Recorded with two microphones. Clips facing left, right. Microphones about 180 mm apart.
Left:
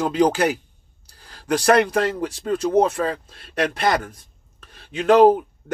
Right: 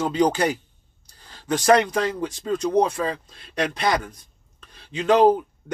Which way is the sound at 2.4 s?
50° left (ahead or behind).